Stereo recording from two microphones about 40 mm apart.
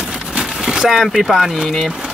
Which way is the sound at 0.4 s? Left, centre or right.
Centre.